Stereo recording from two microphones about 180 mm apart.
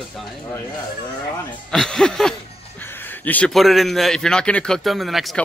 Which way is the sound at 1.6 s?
5° left (ahead or behind).